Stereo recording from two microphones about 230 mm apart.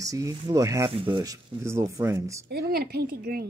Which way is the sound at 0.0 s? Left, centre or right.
Centre.